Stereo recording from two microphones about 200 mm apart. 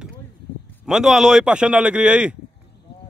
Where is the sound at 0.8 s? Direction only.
5° right (ahead or behind).